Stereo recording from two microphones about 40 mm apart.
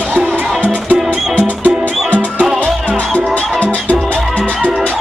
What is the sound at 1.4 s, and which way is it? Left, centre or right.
Music, left.